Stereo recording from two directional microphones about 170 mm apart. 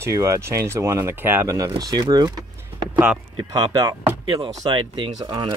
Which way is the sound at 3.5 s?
20° right (ahead or behind).